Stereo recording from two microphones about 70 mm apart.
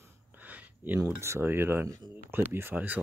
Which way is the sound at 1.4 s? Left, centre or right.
Right.